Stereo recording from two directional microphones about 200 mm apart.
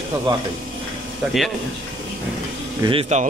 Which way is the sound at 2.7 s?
25° right (ahead or behind).